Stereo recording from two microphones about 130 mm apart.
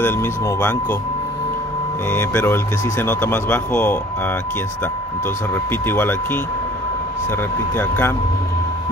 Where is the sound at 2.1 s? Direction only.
15° left (ahead or behind).